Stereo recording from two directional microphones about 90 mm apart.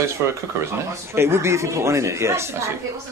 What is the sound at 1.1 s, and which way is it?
Speech, 30° right (ahead or behind).